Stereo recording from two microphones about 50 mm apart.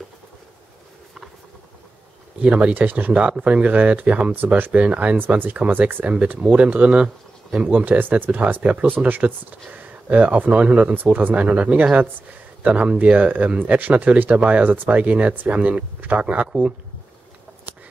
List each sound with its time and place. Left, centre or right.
2.4 s speech: right
2.7 s speech: right
4.8 s speech: right
6.0 s speech: right
13.2 s speech: right